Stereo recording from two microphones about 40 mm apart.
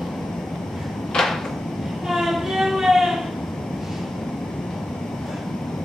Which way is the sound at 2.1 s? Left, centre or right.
Centre.